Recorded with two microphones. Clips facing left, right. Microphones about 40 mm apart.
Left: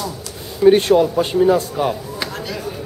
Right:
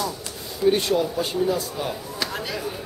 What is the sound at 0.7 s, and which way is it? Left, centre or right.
A man's voice, left.